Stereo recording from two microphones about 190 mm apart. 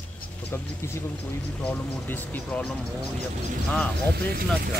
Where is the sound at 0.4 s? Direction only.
10° left (ahead or behind).